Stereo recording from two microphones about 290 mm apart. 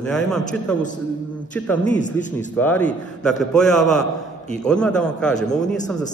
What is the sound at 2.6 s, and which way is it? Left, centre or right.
A man's voice, centre.